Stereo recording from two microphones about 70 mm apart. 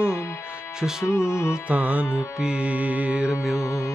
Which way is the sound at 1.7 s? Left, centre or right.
Right.